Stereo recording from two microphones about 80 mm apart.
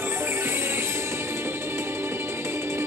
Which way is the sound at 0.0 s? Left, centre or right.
Right.